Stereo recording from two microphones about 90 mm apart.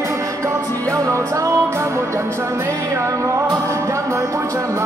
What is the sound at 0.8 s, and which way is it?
Music, 35° right (ahead or behind).